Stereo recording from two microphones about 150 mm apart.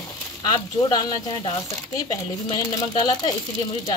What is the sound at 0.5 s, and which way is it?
Speech, 25° left (ahead or behind).